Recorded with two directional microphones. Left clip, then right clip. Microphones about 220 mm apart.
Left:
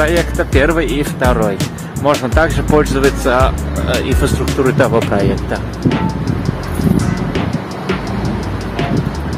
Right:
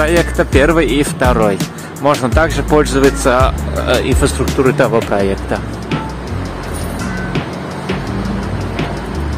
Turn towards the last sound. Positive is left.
turn(degrees=0)  # may be behind; listen again after turning